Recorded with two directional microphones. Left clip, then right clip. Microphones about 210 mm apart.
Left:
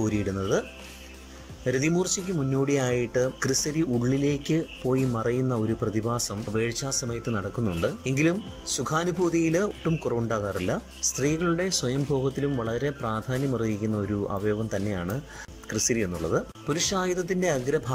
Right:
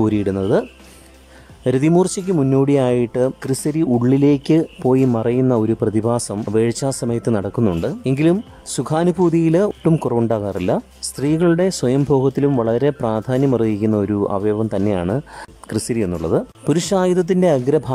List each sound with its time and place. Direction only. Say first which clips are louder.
0.0 s speech: right 10 dB; 25° right (ahead or behind)